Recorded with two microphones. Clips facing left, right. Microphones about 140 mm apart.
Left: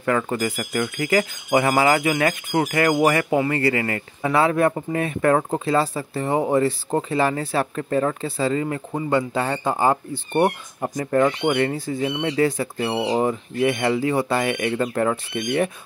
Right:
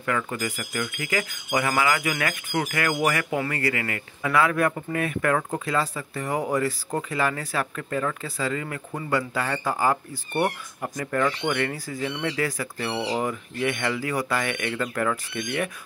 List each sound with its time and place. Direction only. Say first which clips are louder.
0.0 s speech: left 6 dB; 35° left (ahead or behind)